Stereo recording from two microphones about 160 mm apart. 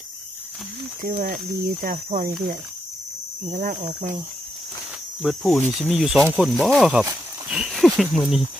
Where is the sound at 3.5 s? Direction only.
50° right (ahead or behind).